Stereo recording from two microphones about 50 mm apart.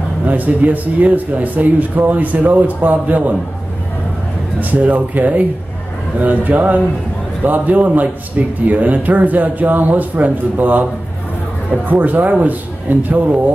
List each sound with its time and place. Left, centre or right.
0.3 s speech: right
4.6 s speech: right
11.9 s speech: right